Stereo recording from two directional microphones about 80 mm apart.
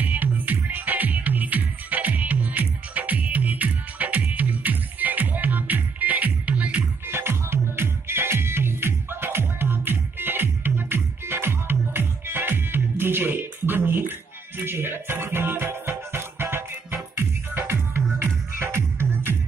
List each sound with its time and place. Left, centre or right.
0.0 s music: right
7.1 s music: right